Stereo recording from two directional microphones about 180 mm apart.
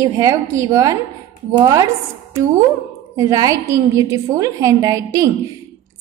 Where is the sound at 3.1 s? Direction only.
20° right (ahead or behind).